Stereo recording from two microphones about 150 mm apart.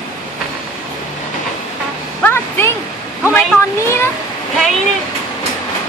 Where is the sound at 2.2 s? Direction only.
15° left (ahead or behind).